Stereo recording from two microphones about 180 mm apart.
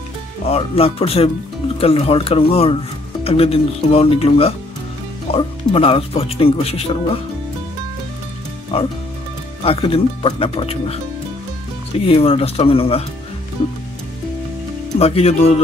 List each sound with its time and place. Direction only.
0.5 s speech: 30° left (ahead or behind)
8.7 s speech: 35° left (ahead or behind)
12.1 s speech: 30° left (ahead or behind)
15.0 s speech: 35° left (ahead or behind)